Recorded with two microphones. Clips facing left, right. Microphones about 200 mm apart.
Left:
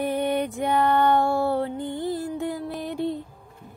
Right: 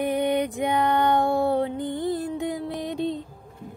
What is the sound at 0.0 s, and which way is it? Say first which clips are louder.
Music: right 1 dB; 15° right (ahead or behind).